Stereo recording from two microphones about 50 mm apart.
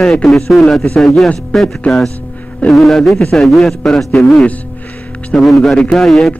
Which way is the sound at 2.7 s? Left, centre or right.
Centre.